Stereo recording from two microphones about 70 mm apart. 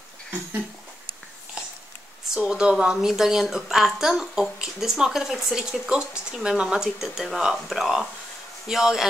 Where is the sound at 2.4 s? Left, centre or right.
Centre.